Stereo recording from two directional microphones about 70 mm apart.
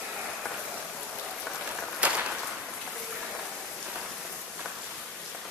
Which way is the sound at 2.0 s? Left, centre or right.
Centre.